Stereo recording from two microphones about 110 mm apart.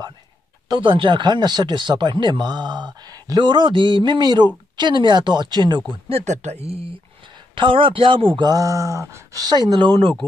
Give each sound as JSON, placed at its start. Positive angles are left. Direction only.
{"t": 0.7, "sound": "speech", "side_deg": -45}
{"t": 6.0, "sound": "speech", "side_deg": -75}
{"t": 7.5, "sound": "speech", "side_deg": -50}
{"t": 8.5, "sound": "speech", "side_deg": -30}